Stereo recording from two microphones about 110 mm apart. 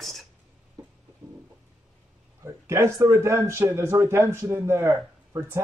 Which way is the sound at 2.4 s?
25° right (ahead or behind).